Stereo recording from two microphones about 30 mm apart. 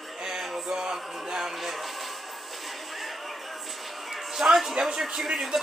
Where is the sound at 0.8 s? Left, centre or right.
Right.